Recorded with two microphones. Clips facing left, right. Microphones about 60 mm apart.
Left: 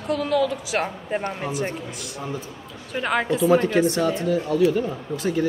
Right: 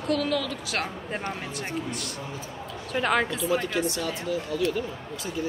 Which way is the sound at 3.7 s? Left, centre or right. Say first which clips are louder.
Left 8 dB; left.